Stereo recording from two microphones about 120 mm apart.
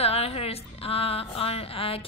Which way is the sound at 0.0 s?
55° left (ahead or behind).